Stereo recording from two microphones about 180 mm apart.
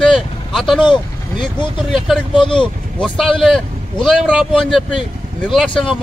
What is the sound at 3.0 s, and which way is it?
A man's voice, centre (ahead or behind).